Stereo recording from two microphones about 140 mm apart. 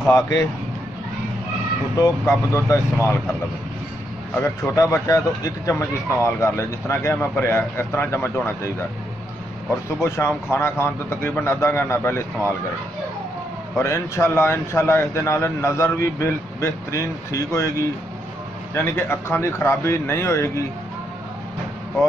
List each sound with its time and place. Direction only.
0.1 s speech: 25° left (ahead or behind)
2.0 s speech: 20° left (ahead or behind)
4.4 s speech: 20° left (ahead or behind)
10.0 s speech: 20° left (ahead or behind)
13.7 s speech: 20° left (ahead or behind)
18.8 s speech: 15° left (ahead or behind)